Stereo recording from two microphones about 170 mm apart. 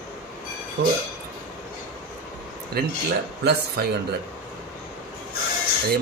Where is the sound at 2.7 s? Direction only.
65° right (ahead or behind).